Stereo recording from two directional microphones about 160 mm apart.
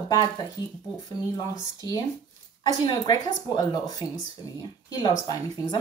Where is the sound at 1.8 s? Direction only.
20° left (ahead or behind).